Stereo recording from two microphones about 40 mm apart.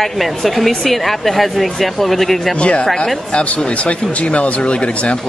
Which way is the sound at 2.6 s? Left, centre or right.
Left.